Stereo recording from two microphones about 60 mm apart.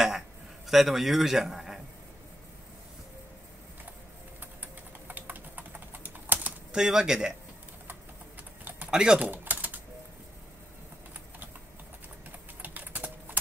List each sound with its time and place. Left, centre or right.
0.7 s a man's voice: centre
4.4 s typing: right
6.7 s speech: centre
8.9 s speech: centre
9.2 s typing: right
12.6 s typing: right